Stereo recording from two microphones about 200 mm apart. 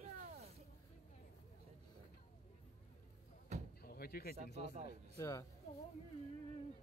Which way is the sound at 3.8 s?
50° left (ahead or behind).